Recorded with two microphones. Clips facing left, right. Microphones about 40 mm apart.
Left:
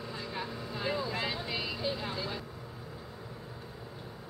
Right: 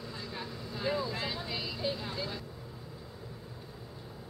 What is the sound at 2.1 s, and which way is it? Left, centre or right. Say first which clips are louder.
Speech: left 1 dB; centre.